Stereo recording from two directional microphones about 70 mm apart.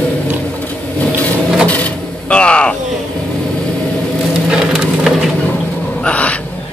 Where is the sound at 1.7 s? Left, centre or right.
Left.